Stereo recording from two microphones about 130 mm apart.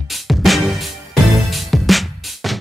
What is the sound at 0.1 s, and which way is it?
Music, centre (ahead or behind).